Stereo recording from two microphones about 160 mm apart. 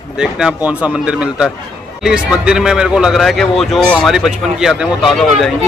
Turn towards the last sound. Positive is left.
turn(degrees=0)  # may be behind; listen again after turning